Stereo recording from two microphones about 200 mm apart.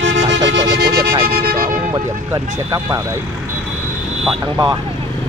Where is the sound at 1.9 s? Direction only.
15° right (ahead or behind).